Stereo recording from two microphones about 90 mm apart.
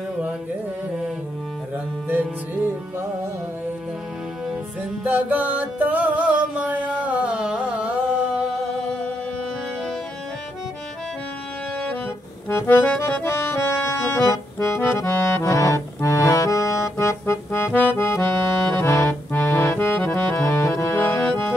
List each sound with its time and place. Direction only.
2.0 s music: 20° right (ahead or behind)
5.0 s music: 20° right (ahead or behind)
12.4 s accordion: 25° left (ahead or behind)
20.4 s music: 30° left (ahead or behind); by 21.5 s 15° left (ahead or behind)